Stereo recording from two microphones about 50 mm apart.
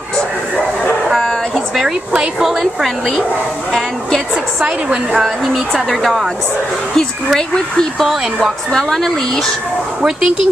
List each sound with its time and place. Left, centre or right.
2.4 s speech: centre
4.6 s a woman's voice: right
5.2 s speech: centre
7.3 s speech: centre
10.0 s speech: centre